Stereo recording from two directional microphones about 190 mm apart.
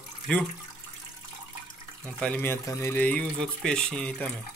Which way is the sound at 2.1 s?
10° left (ahead or behind).